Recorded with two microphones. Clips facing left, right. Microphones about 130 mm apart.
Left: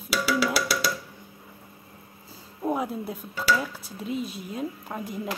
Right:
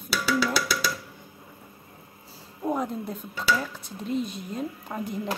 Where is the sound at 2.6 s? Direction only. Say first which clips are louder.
Even; 5° left (ahead or behind).